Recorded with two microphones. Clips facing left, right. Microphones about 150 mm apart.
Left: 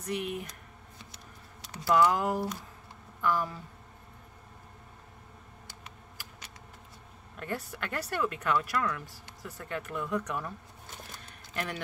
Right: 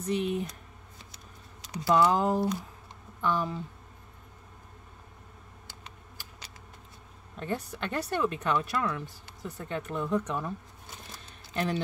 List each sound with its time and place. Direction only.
0.0 s speech: 25° right (ahead or behind)
1.7 s speech: 25° right (ahead or behind)
7.3 s speech: 20° right (ahead or behind)
11.5 s speech: 30° right (ahead or behind)